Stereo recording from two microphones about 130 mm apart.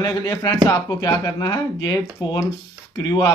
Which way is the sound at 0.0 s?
30° left (ahead or behind).